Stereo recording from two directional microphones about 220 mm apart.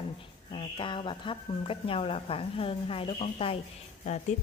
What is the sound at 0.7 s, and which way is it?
A woman's voice, 20° left (ahead or behind).